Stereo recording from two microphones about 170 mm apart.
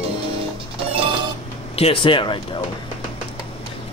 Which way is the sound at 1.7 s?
35° left (ahead or behind).